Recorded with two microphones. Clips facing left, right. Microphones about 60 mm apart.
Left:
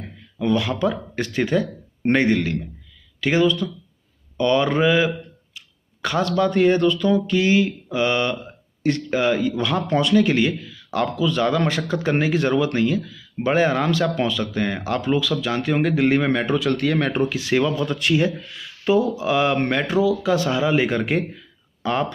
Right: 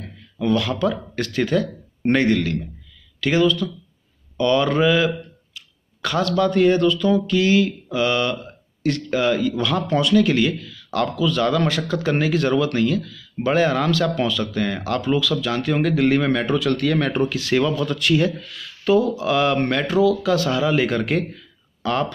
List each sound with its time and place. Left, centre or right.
0.4 s speech: left